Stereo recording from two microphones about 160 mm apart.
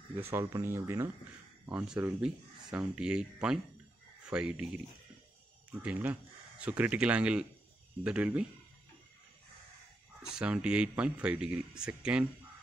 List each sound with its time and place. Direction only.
0.3 s speech: 15° right (ahead or behind)
10.3 s speech: 5° right (ahead or behind)